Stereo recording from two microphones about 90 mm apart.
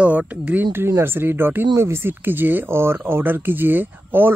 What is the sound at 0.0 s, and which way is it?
Speech, 15° right (ahead or behind).